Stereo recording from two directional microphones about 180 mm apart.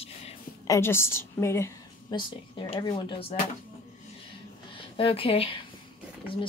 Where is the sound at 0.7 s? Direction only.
15° left (ahead or behind); by 3.3 s 30° left (ahead or behind).